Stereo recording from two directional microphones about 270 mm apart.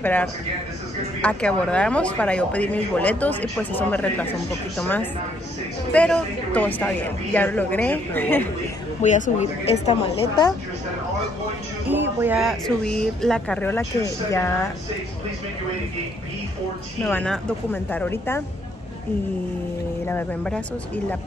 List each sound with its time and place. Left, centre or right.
0.0 s speech: centre
9.0 s a woman's voice: left
11.9 s speech: centre
17.0 s speech: centre
20.1 s speech: centre